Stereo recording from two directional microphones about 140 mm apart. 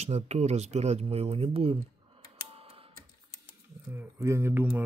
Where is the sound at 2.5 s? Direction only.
45° right (ahead or behind).